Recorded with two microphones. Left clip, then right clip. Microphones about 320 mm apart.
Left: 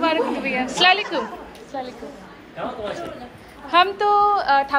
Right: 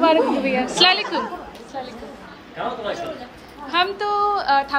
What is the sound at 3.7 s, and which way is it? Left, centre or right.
A woman's voice, centre.